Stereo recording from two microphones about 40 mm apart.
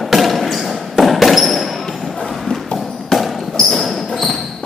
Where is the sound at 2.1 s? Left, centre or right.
Centre.